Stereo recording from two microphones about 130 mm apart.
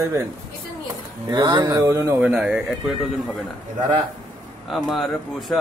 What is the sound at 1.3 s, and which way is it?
Speech, 30° right (ahead or behind).